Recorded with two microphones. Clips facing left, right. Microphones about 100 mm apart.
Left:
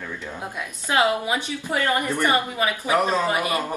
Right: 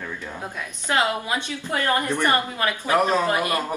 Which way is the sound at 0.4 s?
15° left (ahead or behind).